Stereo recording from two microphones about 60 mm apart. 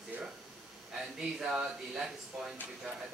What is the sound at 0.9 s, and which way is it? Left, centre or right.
Speech, centre.